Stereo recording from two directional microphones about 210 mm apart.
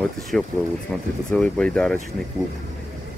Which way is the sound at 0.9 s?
5° left (ahead or behind).